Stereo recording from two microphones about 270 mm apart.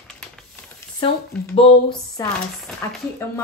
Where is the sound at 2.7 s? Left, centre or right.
Centre.